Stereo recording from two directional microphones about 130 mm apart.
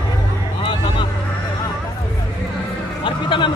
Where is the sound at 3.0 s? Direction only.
40° left (ahead or behind).